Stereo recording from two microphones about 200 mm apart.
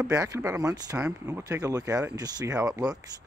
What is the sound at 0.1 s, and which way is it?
Speech, 15° right (ahead or behind).